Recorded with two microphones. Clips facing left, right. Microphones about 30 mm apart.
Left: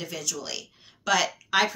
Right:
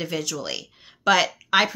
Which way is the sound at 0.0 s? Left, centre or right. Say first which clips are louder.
Right 6 dB; right.